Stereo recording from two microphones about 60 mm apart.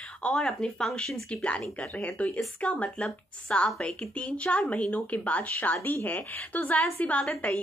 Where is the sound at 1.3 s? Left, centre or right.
Centre.